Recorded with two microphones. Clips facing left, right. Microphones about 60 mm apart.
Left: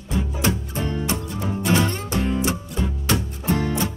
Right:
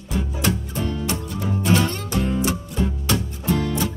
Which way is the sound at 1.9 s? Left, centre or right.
Left.